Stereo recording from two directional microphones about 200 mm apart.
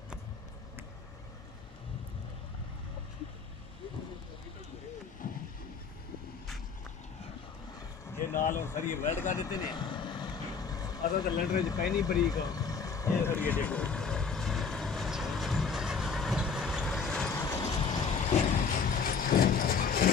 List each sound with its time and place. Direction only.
5.2 s a sound: 45° left (ahead or behind)
8.1 s a sound: 10° left (ahead or behind)
8.5 s speech: 10° left (ahead or behind)
9.4 s vehicle: 20° left (ahead or behind)
11.4 s speech: 20° left (ahead or behind)
12.2 s vehicle: 20° left (ahead or behind)
17.4 s vehicle: 15° left (ahead or behind)
18.2 s vehicle: 35° left (ahead or behind)